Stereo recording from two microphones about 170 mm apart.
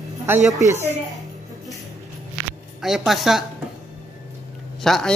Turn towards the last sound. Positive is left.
turn(degrees=0)  # may be behind; listen again after turning